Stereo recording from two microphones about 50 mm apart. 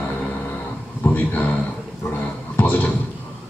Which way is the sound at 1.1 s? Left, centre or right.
Left.